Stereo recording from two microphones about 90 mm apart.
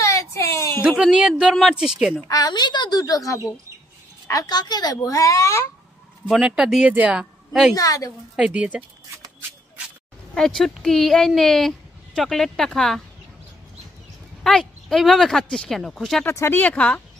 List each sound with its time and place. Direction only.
0.0 s whimper: 35° left (ahead or behind)
0.8 s a woman's voice: 15° right (ahead or behind)
2.2 s a woman's voice: 45° left (ahead or behind)
6.3 s a woman's voice: 10° right (ahead or behind)
7.7 s speech: 40° left (ahead or behind)
8.4 s a woman's voice: 15° right (ahead or behind)
10.3 s speech: 5° left (ahead or behind)
14.4 s speech: 5° left (ahead or behind)
16.3 s speech: 25° left (ahead or behind)